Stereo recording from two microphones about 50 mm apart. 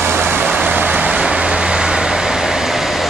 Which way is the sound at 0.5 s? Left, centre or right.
Right.